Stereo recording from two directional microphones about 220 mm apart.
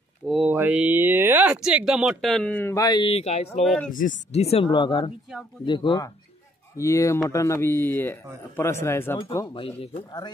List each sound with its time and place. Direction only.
0.3 s speech: 5° right (ahead or behind); by 3.6 s 30° left (ahead or behind)
3.6 s speech: 5° left (ahead or behind)
4.0 s a man's voice: 30° left (ahead or behind)